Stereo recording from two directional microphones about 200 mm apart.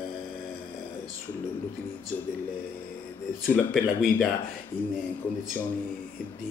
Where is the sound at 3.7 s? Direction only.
Centre (ahead or behind).